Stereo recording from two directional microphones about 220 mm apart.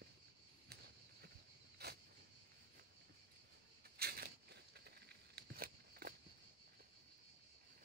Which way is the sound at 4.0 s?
45° right (ahead or behind).